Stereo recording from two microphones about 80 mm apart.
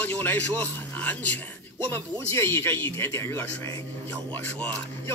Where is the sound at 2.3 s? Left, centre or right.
Left.